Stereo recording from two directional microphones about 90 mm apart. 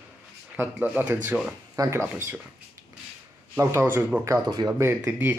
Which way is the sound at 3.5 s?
30° right (ahead or behind).